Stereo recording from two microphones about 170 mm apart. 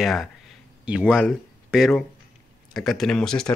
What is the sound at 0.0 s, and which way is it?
Speech, centre (ahead or behind).